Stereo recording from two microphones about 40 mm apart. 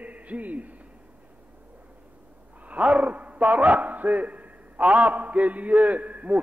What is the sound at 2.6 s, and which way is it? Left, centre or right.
A man's voice, right.